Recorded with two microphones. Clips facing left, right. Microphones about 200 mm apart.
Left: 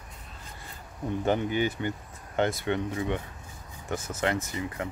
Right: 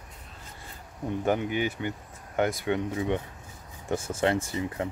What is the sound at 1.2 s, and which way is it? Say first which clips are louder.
Speech: left 1 dB; 5° right (ahead or behind).